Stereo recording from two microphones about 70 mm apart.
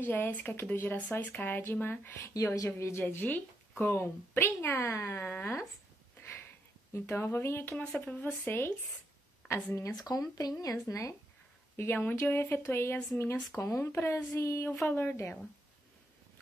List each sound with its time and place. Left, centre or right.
0.0 s speech: left
2.3 s a woman's voice: left
3.1 s speech: left
3.9 s speech: left
6.2 s a sound: left
8.0 s speech: left
9.4 s a sound: centre
9.8 s speech: left
11.7 s speech: left
14.9 s speech: left